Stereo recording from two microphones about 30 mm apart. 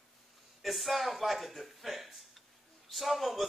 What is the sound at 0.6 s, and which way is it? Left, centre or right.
A man's voice, centre.